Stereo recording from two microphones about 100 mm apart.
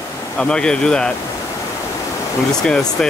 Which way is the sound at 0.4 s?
10° left (ahead or behind).